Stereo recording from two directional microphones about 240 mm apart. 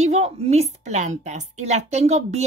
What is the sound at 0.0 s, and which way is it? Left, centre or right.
A woman's voice, right.